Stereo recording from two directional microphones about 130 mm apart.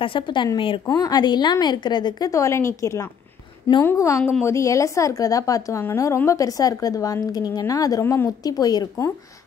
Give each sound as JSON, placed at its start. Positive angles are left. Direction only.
{"t": 0.0, "sound": "a woman's voice", "side_deg": 40}